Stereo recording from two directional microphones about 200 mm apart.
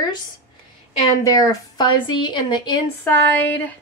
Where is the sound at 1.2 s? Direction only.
15° left (ahead or behind).